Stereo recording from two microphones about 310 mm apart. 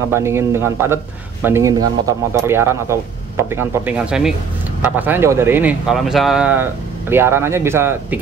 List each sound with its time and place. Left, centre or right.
0.1 s speech: centre